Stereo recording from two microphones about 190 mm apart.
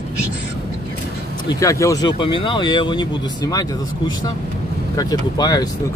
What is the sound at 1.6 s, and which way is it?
Speech, 15° left (ahead or behind).